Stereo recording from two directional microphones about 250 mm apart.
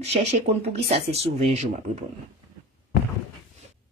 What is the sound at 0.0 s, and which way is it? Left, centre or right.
A woman's voice, right.